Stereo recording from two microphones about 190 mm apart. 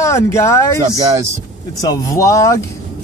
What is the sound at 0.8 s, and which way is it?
Speech, 20° right (ahead or behind).